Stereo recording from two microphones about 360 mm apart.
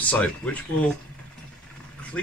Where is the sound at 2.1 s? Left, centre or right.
Centre.